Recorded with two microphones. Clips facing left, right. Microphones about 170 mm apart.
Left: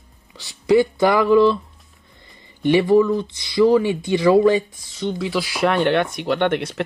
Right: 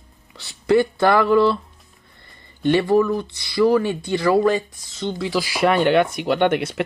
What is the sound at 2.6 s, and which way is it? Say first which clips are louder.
Speech: left 2 dB; 15° left (ahead or behind).